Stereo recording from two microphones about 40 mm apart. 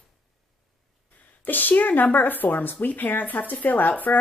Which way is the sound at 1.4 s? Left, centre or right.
Left.